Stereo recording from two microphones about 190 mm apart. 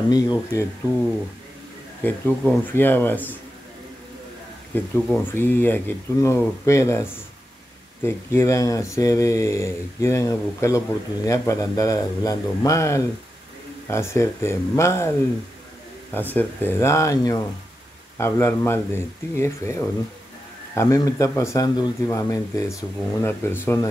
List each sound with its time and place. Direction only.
0.1 s speech: 20° left (ahead or behind)
2.0 s speech: 10° left (ahead or behind)
4.7 s speech: 10° left (ahead or behind)